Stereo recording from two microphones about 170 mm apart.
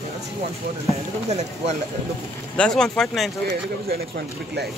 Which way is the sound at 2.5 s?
5° left (ahead or behind).